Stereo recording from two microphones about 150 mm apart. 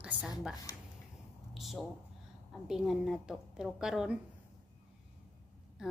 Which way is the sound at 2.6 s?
Centre (ahead or behind).